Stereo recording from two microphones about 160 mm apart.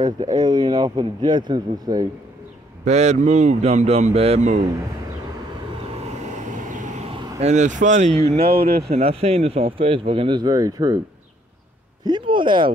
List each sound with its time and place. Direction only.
0.4 s speech: 25° right (ahead or behind)
2.8 s speech: 45° right (ahead or behind)
6.7 s vehicle: 50° right (ahead or behind)
8.5 s speech: 75° right (ahead or behind)
8.9 s speech: 40° right (ahead or behind); by 11.0 s 25° right (ahead or behind)
12.0 s speech: 30° right (ahead or behind)